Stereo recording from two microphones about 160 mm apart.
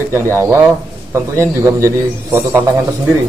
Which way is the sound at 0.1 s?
15° right (ahead or behind).